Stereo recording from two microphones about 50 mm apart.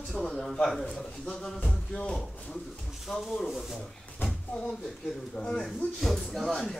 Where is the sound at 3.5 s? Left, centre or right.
Centre.